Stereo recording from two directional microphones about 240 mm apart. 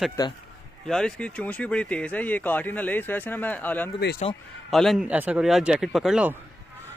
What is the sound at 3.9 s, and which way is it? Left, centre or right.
Speech, left.